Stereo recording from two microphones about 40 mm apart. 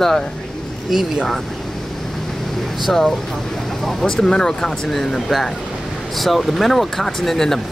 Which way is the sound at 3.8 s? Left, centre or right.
Centre.